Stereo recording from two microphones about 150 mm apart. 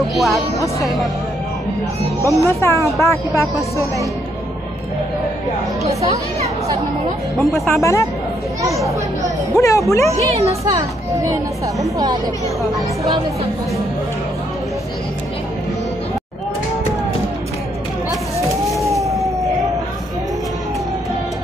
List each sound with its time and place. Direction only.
0.1 s speech: centre (ahead or behind)
2.2 s speech: 20° left (ahead or behind)
3.7 s speech: 20° right (ahead or behind)
7.3 s speech: centre (ahead or behind)
7.8 s speech: 20° left (ahead or behind)
8.6 s speech: 20° right (ahead or behind)
9.6 s speech: 20° left (ahead or behind)
10.5 s speech: 20° right (ahead or behind)
19.0 s emergency vehicle: centre (ahead or behind)